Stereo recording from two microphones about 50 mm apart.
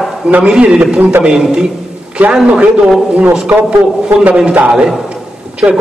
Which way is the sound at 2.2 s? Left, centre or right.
Right.